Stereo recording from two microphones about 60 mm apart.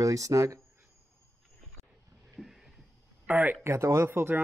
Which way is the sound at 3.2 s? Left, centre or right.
Right.